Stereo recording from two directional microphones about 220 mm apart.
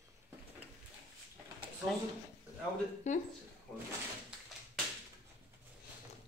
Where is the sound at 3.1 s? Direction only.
35° left (ahead or behind).